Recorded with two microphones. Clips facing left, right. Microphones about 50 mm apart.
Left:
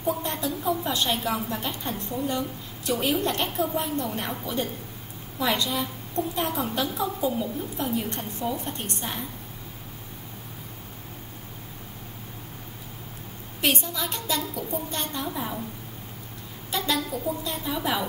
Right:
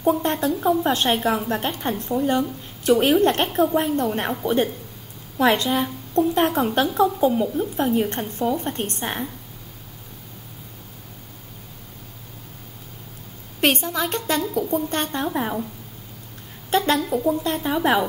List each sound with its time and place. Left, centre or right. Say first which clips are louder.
0.0 s a woman's voice: right 7 dB; right
5.4 s a woman's voice: right 7 dB; right
13.6 s a woman's voice: right 6 dB; right
16.7 s a woman's voice: right 7 dB; right